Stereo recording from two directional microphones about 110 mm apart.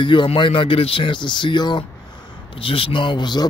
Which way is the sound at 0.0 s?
50° left (ahead or behind).